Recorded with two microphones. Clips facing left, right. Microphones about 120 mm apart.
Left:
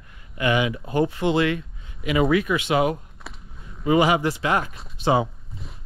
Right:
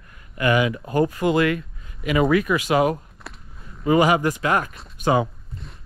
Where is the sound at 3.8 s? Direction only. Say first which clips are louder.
Right 1 dB; 40° right (ahead or behind).